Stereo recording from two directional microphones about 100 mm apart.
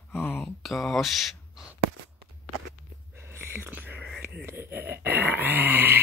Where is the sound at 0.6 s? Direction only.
Centre (ahead or behind).